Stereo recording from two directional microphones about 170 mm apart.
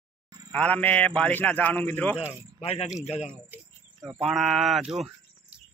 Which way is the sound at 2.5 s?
40° left (ahead or behind).